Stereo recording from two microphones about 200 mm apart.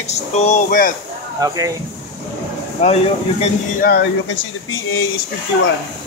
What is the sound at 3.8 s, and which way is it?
Speech, 50° left (ahead or behind).